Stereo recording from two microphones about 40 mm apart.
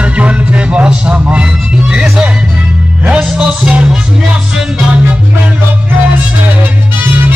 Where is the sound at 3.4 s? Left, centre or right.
Right.